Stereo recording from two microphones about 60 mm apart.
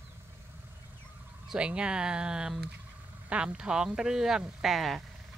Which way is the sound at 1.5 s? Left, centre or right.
Centre.